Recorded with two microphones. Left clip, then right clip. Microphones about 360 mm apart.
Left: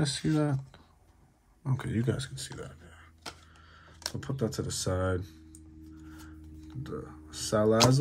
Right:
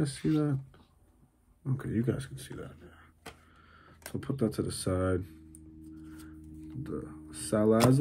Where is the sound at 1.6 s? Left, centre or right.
Left.